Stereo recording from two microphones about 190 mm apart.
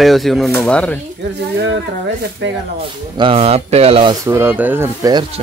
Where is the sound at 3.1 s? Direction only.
30° right (ahead or behind).